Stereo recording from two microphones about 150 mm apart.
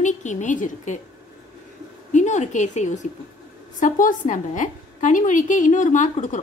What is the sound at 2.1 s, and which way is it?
A woman's voice, 50° left (ahead or behind).